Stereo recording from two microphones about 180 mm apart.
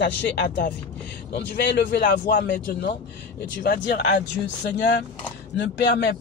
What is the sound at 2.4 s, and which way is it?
A man's voice, 65° left (ahead or behind).